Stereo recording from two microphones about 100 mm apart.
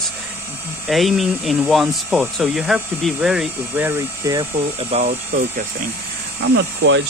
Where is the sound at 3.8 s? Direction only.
20° right (ahead or behind).